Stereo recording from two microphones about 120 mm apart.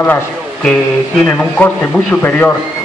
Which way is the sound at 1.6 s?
15° left (ahead or behind).